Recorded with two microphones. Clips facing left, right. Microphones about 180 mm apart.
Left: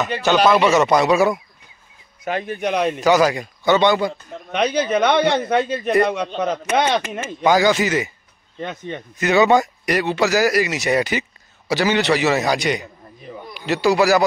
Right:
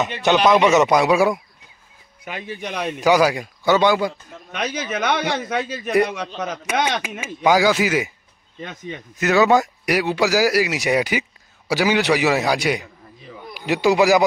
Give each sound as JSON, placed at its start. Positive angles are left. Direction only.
{"t": 0.5, "sound": "speech", "side_deg": -15}
{"t": 2.2, "sound": "speech", "side_deg": 50}
{"t": 2.9, "sound": "speech", "side_deg": -10}
{"t": 4.5, "sound": "a man's voice", "side_deg": 60}
{"t": 6.6, "sound": "speech", "side_deg": -10}
{"t": 8.5, "sound": "a man's voice", "side_deg": 55}
{"t": 9.2, "sound": "speech", "side_deg": -5}